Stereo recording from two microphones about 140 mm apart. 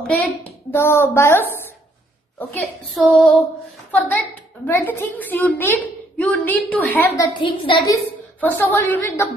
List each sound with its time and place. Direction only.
0.0 s a woman's voice: 15° left (ahead or behind)
2.9 s female singing: 5° left (ahead or behind)
3.9 s a woman's voice: 10° left (ahead or behind)
7.2 s a woman's voice: 35° left (ahead or behind)
8.4 s a woman's voice: 15° left (ahead or behind)